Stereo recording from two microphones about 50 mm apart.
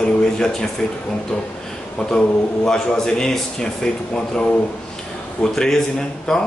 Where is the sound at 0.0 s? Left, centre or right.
Centre.